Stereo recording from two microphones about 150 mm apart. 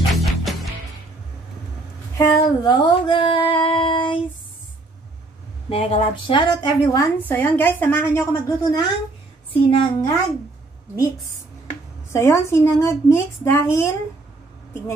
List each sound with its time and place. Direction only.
0.1 s music: centre (ahead or behind)
2.1 s speech: 30° left (ahead or behind)
5.7 s speech: 40° left (ahead or behind)
7.2 s a woman's voice: 10° left (ahead or behind)
9.5 s speech: 35° left (ahead or behind)
12.1 s a woman's voice: 15° left (ahead or behind)